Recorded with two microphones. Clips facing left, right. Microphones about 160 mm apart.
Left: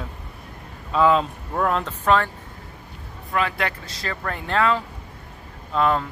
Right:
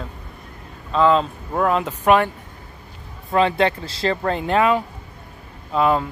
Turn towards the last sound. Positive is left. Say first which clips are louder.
# right 3 dB
turn(degrees=-5)  # may be behind; listen again after turning